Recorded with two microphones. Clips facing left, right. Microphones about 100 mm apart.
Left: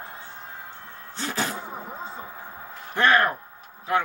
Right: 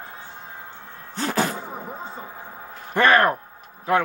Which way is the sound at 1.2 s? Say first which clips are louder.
Right 5 dB; 50° right (ahead or behind).